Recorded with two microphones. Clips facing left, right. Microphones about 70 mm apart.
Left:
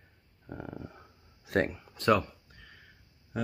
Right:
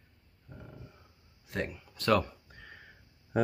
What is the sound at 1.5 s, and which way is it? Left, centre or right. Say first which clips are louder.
Speech: left 8 dB; left.